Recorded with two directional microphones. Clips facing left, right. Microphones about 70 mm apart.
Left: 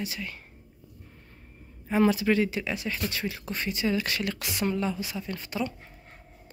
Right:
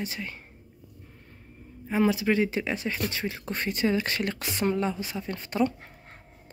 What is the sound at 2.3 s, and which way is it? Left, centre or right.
Speech, right.